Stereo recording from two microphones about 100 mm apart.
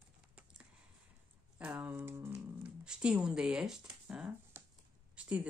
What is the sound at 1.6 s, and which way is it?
Speech, 20° right (ahead or behind).